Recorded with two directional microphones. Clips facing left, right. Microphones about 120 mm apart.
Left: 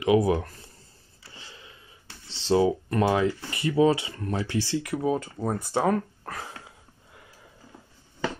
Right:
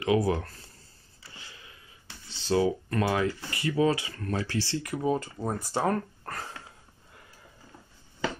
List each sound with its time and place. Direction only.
0.0 s speech: 20° left (ahead or behind)
1.3 s a sound: 25° left (ahead or behind)
2.2 s speech: 25° left (ahead or behind)
4.8 s speech: 5° left (ahead or behind)